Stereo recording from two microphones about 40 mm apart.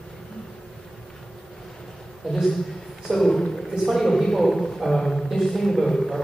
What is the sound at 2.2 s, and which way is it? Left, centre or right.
A man's voice, centre.